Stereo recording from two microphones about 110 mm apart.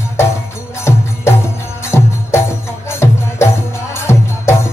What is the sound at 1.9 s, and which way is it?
Music, 25° left (ahead or behind).